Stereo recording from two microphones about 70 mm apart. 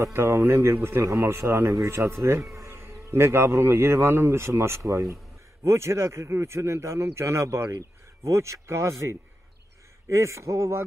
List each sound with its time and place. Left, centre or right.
0.0 s a man's voice: right